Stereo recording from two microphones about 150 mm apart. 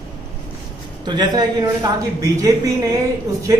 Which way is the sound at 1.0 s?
30° right (ahead or behind).